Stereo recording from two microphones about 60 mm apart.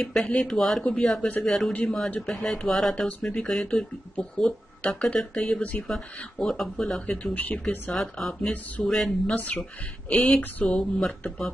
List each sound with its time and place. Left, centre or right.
0.0 s speech: centre
1.7 s speech: left
2.2 s speech: centre
3.1 s speech: left
3.3 s speech: centre
7.1 s speech: left
7.9 s speech: centre
9.3 s speech: left
10.0 s speech: centre